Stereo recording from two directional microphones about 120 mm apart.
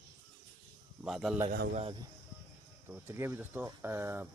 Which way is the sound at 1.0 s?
5° right (ahead or behind).